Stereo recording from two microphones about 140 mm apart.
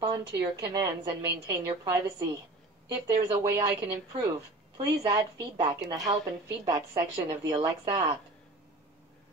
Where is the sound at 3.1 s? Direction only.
20° right (ahead or behind).